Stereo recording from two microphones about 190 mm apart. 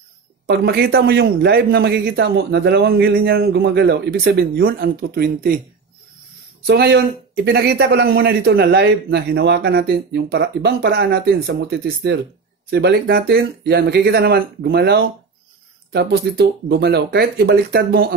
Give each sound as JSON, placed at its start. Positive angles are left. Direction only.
{"t": 0.5, "sound": "speech", "side_deg": -55}
{"t": 6.6, "sound": "speech", "side_deg": -55}